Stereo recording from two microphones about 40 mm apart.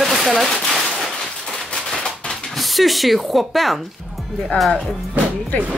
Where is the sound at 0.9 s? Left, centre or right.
Centre.